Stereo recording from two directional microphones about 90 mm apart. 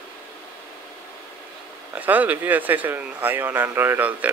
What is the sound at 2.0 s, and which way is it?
Speech, 20° right (ahead or behind).